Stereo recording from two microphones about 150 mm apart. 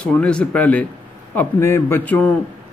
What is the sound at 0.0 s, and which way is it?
Speech, 10° left (ahead or behind).